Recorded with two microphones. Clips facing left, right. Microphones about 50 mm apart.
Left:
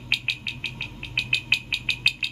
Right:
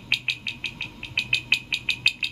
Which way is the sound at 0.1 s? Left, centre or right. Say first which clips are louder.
Even; centre.